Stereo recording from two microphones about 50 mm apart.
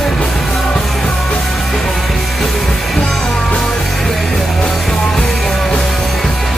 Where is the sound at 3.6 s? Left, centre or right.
Centre.